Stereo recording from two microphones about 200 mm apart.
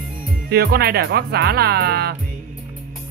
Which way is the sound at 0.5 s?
50° right (ahead or behind).